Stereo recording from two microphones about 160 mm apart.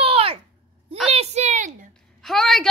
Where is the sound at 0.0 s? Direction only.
35° right (ahead or behind).